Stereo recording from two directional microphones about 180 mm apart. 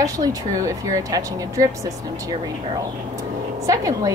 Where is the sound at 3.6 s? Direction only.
20° right (ahead or behind).